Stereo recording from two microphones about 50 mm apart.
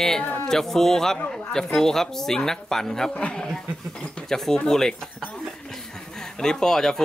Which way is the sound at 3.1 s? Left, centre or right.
Left.